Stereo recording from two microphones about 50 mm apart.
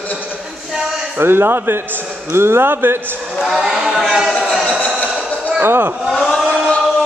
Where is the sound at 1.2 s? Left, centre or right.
Right.